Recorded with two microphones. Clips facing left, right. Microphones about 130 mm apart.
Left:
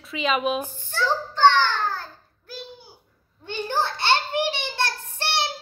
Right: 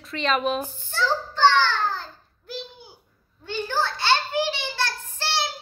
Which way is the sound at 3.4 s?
20° left (ahead or behind).